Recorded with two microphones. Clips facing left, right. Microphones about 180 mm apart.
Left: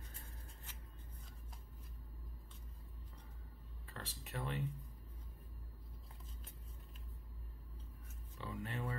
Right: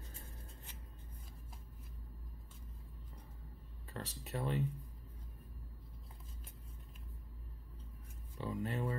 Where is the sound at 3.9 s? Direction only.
35° right (ahead or behind).